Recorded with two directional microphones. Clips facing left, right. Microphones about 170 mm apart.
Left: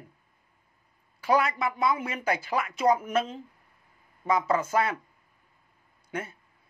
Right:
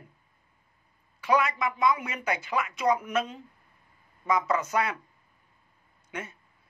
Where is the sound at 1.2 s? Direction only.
30° left (ahead or behind).